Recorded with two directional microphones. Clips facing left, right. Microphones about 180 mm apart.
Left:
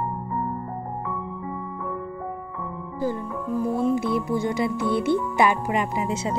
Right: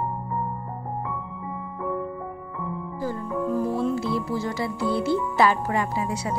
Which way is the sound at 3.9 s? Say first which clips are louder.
Left 3 dB; 20° left (ahead or behind).